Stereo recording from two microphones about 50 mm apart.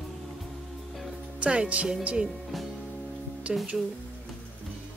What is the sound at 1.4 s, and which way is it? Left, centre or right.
Speech, right.